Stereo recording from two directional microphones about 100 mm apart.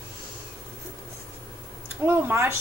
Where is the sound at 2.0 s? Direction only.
20° right (ahead or behind).